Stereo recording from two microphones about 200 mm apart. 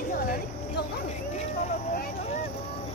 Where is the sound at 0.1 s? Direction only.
45° left (ahead or behind).